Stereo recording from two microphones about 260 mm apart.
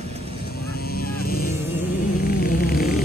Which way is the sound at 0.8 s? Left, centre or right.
Left.